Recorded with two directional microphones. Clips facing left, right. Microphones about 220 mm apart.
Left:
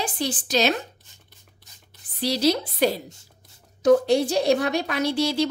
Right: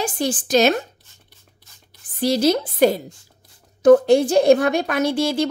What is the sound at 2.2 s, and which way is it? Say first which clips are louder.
A woman's voice: right 4 dB; 50° right (ahead or behind).